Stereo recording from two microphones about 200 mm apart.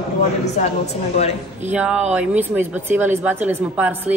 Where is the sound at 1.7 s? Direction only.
5° right (ahead or behind).